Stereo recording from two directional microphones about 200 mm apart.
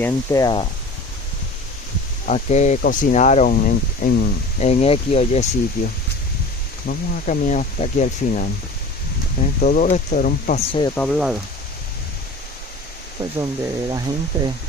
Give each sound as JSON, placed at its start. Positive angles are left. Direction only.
{"t": 0.0, "sound": "speech", "side_deg": 15}
{"t": 2.2, "sound": "speech", "side_deg": 35}
{"t": 6.9, "sound": "speech", "side_deg": 40}
{"t": 9.6, "sound": "speech", "side_deg": 40}
{"t": 10.6, "sound": "speech", "side_deg": 25}
{"t": 11.0, "sound": "speech", "side_deg": 0}
{"t": 13.4, "sound": "speech", "side_deg": -20}